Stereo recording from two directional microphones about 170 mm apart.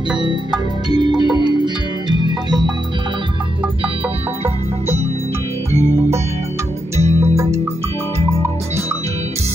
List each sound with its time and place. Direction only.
0.8 s music: 25° right (ahead or behind)
5.7 s music: 20° left (ahead or behind)
7.0 s music: 40° right (ahead or behind)